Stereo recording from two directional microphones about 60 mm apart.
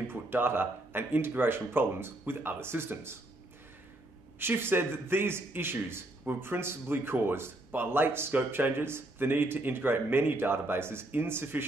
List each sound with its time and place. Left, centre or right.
0.1 s speech: right
4.4 s speech: right